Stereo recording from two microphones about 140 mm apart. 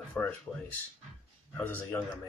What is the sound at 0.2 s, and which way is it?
Speech, 10° left (ahead or behind).